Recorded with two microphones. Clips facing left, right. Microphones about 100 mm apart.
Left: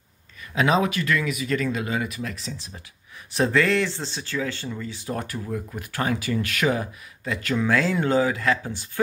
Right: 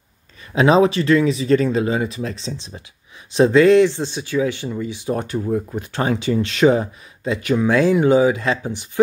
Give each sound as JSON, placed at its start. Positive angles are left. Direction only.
{"t": 0.5, "sound": "speech", "side_deg": -30}